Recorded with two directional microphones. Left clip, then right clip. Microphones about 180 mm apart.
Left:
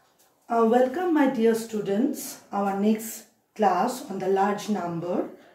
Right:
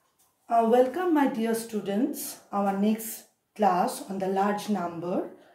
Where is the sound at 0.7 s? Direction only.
40° right (ahead or behind).